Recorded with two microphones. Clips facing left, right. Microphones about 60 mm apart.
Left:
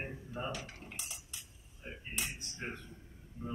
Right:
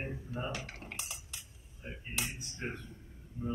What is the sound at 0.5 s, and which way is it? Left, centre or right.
Cutlery, right.